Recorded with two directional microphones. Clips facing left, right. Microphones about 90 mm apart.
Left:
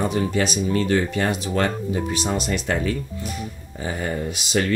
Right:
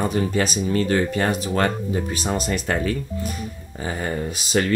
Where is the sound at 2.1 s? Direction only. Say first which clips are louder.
Even; 45° right (ahead or behind).